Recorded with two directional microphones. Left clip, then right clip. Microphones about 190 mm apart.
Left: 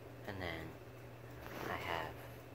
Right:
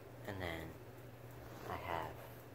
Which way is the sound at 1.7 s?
15° right (ahead or behind).